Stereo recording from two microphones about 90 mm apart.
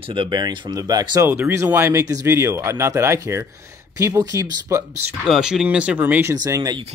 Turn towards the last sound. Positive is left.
turn(degrees=-40)  # may be behind; listen again after turning